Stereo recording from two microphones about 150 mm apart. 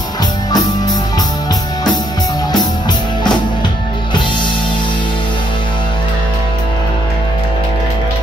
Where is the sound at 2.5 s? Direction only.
30° left (ahead or behind).